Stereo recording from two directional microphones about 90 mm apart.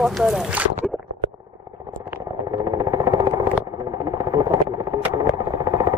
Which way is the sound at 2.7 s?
35° right (ahead or behind).